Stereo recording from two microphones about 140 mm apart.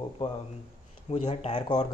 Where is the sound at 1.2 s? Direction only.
45° left (ahead or behind).